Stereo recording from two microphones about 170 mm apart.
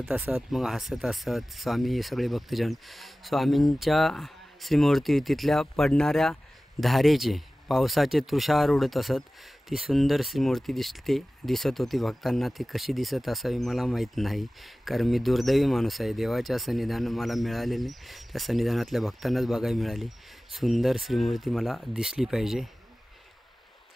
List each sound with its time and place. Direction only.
0.0 s speech: 5° right (ahead or behind)